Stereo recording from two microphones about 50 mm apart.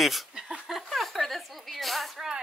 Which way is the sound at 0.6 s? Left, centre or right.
Centre.